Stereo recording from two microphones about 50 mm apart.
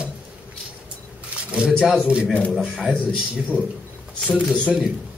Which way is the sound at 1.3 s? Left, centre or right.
Right.